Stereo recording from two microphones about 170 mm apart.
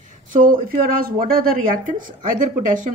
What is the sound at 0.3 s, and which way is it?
Speech, 50° right (ahead or behind).